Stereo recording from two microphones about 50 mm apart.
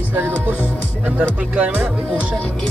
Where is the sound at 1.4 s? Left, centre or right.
Right.